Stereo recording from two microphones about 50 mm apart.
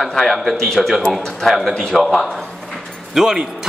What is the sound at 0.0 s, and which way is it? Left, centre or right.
A man's voice, centre.